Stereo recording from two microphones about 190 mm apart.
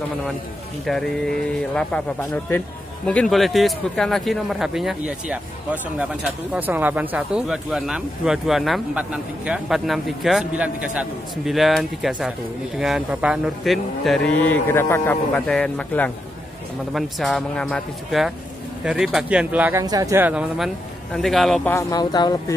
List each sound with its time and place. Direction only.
0.8 s speech: centre (ahead or behind)
21.7 s speech: 20° left (ahead or behind)